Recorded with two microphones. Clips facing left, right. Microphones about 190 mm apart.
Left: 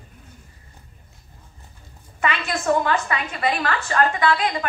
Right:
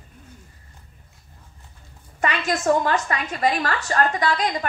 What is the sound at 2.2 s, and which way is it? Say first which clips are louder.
A woman's voice: right 1 dB; 40° right (ahead or behind).